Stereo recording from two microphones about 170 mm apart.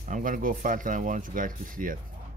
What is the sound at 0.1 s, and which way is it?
Speech, 50° right (ahead or behind).